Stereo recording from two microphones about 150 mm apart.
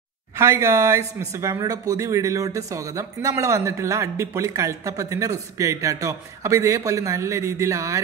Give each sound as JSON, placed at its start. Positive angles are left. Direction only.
{"t": 0.4, "sound": "speech", "side_deg": -20}